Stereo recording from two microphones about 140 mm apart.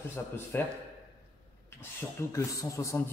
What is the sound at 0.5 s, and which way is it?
Speech, 15° left (ahead or behind).